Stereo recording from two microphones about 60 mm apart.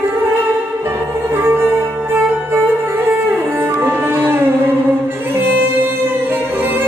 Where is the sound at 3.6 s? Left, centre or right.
Right.